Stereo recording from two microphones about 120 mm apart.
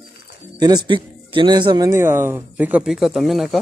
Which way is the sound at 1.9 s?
20° right (ahead or behind).